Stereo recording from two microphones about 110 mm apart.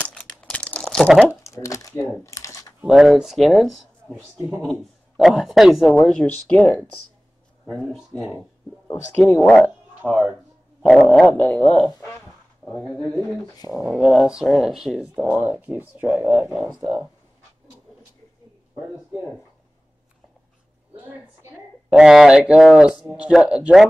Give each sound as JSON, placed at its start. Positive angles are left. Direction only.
{"t": 0.0, "sound": "crumpling", "side_deg": 10}
{"t": 1.5, "sound": "speech", "side_deg": 30}
{"t": 2.9, "sound": "speech", "side_deg": -5}
{"t": 5.9, "sound": "dog", "side_deg": 5}
{"t": 7.8, "sound": "speech", "side_deg": 0}
{"t": 9.3, "sound": "dog", "side_deg": 10}
{"t": 10.0, "sound": "speech", "side_deg": 0}
{"t": 10.9, "sound": "dog", "side_deg": 5}
{"t": 13.6, "sound": "speech", "side_deg": 30}
{"t": 13.8, "sound": "speech", "side_deg": -5}
{"t": 20.9, "sound": "a woman's voice", "side_deg": -15}
{"t": 21.8, "sound": "speech", "side_deg": -5}